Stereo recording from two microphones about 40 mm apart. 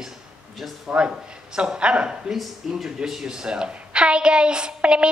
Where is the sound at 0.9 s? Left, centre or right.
Right.